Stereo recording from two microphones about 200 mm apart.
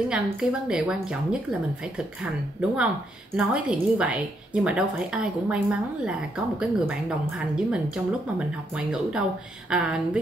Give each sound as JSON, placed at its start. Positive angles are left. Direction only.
{"t": 0.1, "sound": "speech", "side_deg": -5}